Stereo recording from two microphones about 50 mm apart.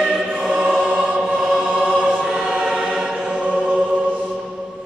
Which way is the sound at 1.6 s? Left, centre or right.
Right.